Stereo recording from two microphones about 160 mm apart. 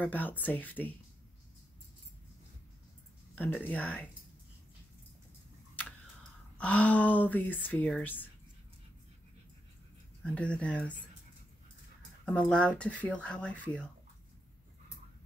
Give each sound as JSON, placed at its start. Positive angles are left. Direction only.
{"t": 0.0, "sound": "speech", "side_deg": 10}
{"t": 3.5, "sound": "speech", "side_deg": 10}
{"t": 6.6, "sound": "speech", "side_deg": 10}
{"t": 10.2, "sound": "speech", "side_deg": 5}
{"t": 12.3, "sound": "speech", "side_deg": 5}